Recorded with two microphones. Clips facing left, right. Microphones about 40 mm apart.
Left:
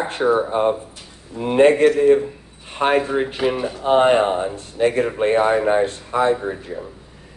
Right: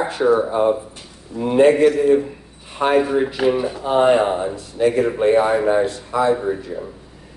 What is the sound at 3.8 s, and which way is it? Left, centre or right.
Speech, left.